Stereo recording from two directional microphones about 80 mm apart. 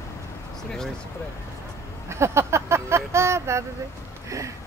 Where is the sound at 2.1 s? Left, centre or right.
Right.